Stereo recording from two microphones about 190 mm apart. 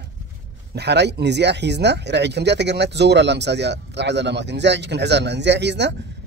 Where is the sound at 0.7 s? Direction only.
60° right (ahead or behind).